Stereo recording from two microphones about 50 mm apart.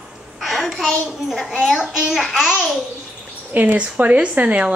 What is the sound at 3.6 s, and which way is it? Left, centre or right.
Speech, right.